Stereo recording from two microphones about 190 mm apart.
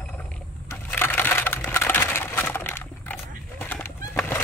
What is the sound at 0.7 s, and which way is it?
Typing, 10° left (ahead or behind).